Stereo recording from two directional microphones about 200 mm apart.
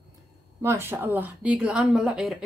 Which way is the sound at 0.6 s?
10° right (ahead or behind).